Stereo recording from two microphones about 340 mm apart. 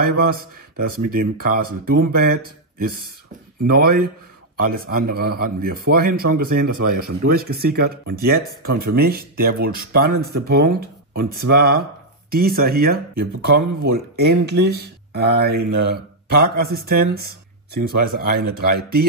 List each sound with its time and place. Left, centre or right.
0.0 s a man's voice: right